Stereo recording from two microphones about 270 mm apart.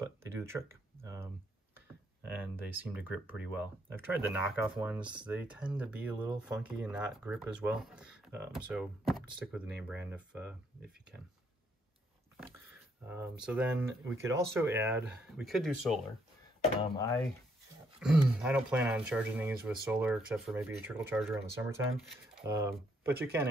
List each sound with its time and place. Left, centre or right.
0.0 s a sound: centre
2.2 s speech: centre
13.0 s speech: centre
17.9 s speech: centre